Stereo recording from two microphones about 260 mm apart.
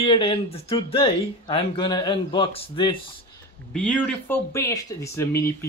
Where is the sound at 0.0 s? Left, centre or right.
Left.